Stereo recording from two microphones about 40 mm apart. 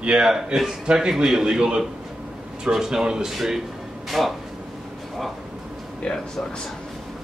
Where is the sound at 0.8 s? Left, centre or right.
Centre.